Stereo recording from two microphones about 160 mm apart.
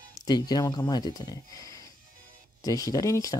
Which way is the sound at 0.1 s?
25° left (ahead or behind).